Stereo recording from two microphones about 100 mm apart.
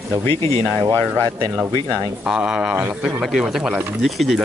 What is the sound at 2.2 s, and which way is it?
Speech, 10° right (ahead or behind).